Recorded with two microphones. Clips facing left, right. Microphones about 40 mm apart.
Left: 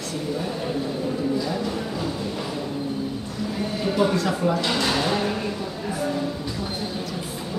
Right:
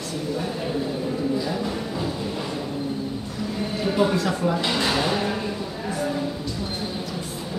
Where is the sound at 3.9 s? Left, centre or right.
Centre.